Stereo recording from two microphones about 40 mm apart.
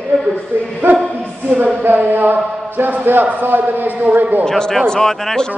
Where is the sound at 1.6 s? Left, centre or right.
Right.